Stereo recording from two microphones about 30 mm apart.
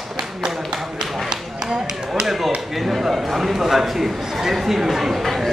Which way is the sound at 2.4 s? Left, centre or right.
Centre.